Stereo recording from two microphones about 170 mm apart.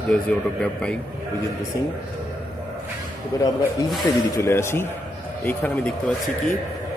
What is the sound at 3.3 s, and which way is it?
Speech, 20° left (ahead or behind).